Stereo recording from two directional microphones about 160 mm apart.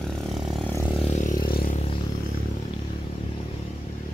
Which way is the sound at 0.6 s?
20° left (ahead or behind).